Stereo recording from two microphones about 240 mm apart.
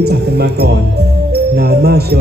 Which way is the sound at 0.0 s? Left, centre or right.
Right.